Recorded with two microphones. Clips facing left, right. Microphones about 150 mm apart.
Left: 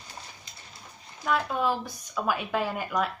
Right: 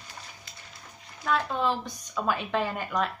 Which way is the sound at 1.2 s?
10° left (ahead or behind).